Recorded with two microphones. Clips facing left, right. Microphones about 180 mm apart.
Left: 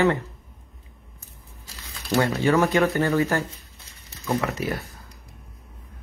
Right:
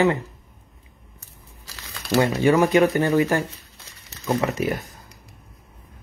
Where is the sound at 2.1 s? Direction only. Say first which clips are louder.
Right 3 dB; 15° right (ahead or behind).